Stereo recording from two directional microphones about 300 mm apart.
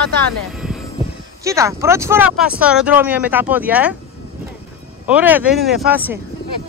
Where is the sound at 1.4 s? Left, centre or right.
Centre.